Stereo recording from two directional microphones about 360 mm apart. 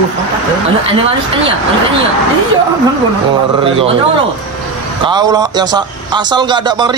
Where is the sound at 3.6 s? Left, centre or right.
Centre.